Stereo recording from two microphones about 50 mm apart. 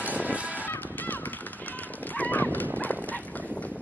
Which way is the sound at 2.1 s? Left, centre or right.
Left.